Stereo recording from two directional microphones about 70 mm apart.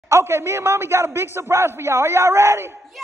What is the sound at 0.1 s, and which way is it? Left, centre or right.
Speech, right.